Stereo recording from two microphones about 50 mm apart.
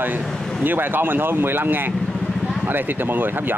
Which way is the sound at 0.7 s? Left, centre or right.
Right.